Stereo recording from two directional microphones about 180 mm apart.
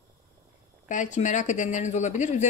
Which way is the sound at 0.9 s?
45° left (ahead or behind).